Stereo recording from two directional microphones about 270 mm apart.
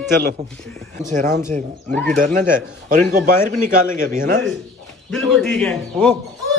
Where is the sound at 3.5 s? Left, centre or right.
Right.